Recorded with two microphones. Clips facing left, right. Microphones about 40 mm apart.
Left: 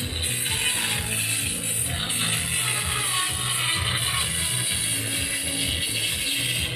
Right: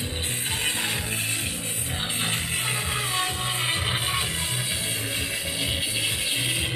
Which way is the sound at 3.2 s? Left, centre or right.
Centre.